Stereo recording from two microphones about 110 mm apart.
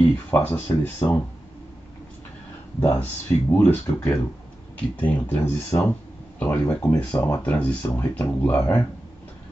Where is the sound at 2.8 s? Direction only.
20° left (ahead or behind).